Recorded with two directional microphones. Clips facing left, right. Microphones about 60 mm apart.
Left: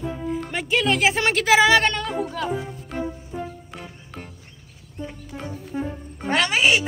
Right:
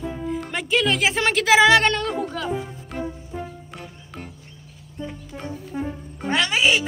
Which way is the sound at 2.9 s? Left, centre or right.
Centre.